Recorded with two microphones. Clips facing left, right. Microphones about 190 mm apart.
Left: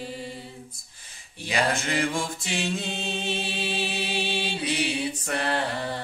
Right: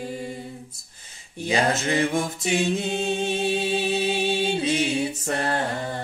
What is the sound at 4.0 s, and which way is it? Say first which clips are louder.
A capella: right 6 dB; 45° right (ahead or behind).